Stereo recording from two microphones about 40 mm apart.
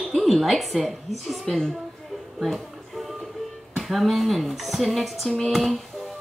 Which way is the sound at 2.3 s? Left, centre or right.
Centre.